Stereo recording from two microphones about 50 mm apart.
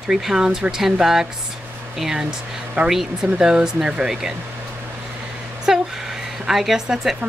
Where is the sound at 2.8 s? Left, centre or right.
Centre.